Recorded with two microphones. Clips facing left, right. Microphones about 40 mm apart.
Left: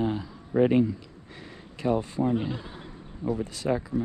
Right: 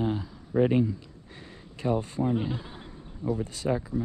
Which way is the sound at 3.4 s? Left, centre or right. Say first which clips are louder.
Left 2 dB; left.